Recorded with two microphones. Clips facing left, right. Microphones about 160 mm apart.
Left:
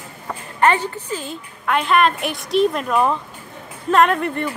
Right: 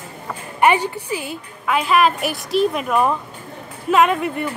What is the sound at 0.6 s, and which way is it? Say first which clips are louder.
A woman's voice: right 1 dB; 10° right (ahead or behind).